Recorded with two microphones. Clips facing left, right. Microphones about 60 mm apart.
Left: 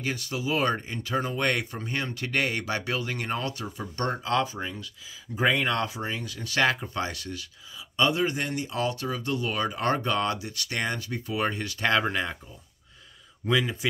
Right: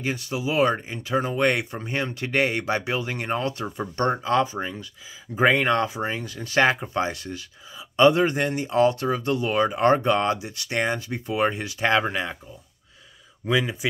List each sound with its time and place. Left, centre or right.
0.0 s speech: right
3.6 s speech: right
7.9 s speech: right; by 12.4 s centre
13.5 s a man's voice: centre